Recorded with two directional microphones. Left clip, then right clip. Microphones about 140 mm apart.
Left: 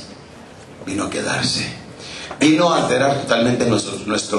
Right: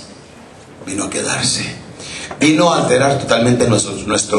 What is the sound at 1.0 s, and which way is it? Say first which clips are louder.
A man's voice: right 2 dB; 15° right (ahead or behind).